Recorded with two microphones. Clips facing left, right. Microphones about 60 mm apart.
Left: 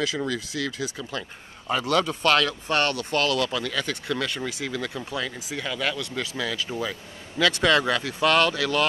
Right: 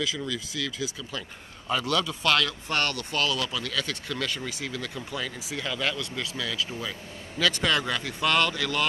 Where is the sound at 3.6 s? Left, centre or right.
Left.